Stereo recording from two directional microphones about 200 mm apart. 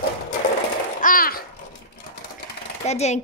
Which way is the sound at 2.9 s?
35° left (ahead or behind).